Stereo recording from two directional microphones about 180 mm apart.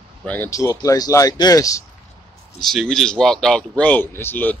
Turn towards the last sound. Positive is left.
turn(degrees=10)  # may be behind; listen again after turning